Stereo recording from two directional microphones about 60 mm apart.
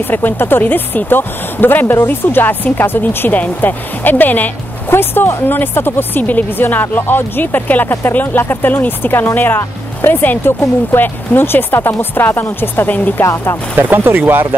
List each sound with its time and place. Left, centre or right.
0.1 s speech: left
13.2 s speech: left
13.7 s speech: right